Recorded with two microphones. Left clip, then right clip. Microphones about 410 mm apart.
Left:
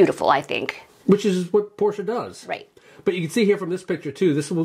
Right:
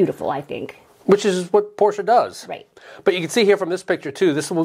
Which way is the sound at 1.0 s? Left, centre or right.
Right.